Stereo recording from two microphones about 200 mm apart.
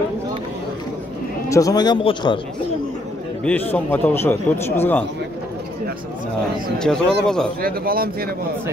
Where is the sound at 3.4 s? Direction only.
10° left (ahead or behind).